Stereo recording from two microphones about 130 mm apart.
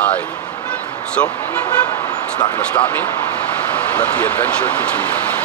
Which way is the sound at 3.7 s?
15° left (ahead or behind).